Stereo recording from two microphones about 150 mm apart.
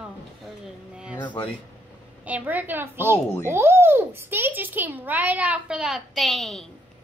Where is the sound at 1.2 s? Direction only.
10° left (ahead or behind).